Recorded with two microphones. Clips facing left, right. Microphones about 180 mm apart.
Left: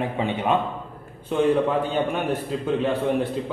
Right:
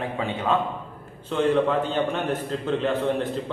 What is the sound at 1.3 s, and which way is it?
A man's voice, 10° left (ahead or behind).